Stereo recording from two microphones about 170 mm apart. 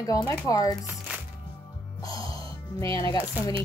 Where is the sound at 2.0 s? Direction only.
20° left (ahead or behind).